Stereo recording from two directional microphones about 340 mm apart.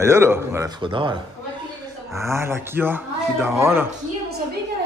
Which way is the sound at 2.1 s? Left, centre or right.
Centre.